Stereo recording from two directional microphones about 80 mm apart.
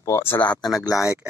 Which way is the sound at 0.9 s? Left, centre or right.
Left.